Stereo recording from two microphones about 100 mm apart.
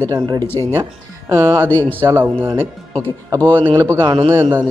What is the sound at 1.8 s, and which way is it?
Speech, 25° right (ahead or behind).